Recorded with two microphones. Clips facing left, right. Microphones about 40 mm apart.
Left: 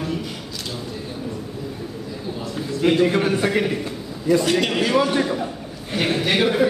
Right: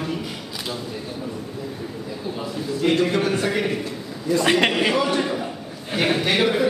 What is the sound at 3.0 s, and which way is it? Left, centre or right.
Speech, centre.